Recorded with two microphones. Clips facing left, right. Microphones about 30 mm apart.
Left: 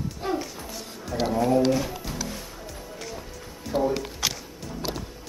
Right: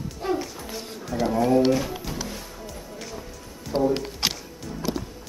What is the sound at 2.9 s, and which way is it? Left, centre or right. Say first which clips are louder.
Music: left 1 dB; centre.